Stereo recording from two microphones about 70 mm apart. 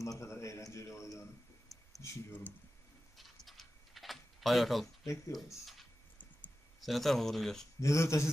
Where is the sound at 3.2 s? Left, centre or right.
Centre.